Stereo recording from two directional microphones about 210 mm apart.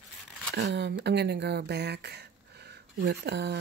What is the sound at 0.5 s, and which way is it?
Speech, 55° right (ahead or behind).